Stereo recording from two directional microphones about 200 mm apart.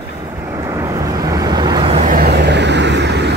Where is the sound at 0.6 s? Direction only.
15° right (ahead or behind).